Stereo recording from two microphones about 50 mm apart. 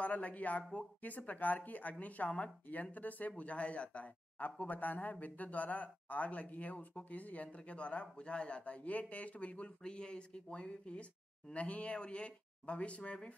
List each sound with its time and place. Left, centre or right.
0.0 s speech: left